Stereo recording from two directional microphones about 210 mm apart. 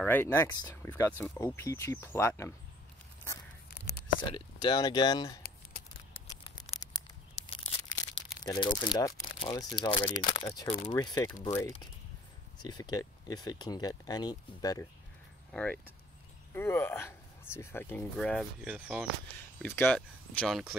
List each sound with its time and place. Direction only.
0.0 s speech: 10° left (ahead or behind)
3.7 s a sound: 50° left (ahead or behind)
4.2 s speech: 20° left (ahead or behind)
6.2 s tearing: 20° left (ahead or behind)
8.5 s speech: 20° left (ahead or behind)
15.5 s speech: 5° left (ahead or behind)
19.6 s speech: 10° left (ahead or behind)